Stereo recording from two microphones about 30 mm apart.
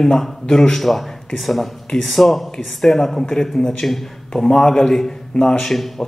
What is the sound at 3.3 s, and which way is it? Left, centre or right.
Speech, centre.